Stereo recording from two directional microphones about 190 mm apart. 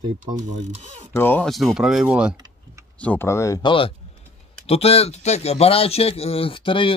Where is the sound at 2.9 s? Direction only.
10° left (ahead or behind).